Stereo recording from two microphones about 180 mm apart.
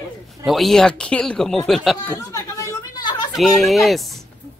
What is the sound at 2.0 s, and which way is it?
Chatter, 15° left (ahead or behind).